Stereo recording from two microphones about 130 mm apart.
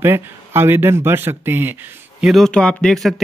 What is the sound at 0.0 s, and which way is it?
Speech, 20° right (ahead or behind).